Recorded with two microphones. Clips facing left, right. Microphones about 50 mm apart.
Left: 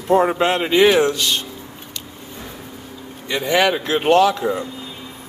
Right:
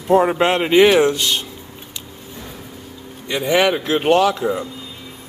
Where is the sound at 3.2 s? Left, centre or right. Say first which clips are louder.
Right 1 dB; centre.